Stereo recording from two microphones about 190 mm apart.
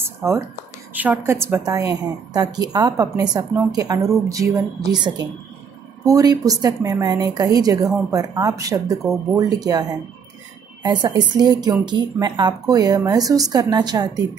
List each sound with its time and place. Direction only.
0.9 s a woman's voice: 10° right (ahead or behind)
6.0 s speech: 20° right (ahead or behind)